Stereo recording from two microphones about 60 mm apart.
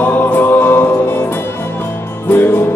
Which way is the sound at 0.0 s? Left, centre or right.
Left.